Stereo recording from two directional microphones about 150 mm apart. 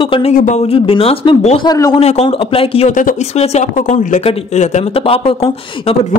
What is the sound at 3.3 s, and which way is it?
Speech, 50° left (ahead or behind).